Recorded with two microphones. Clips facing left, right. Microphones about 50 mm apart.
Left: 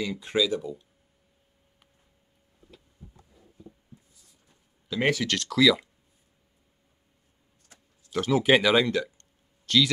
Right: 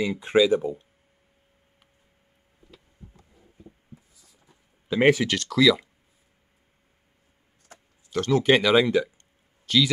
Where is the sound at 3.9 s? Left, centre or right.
Right.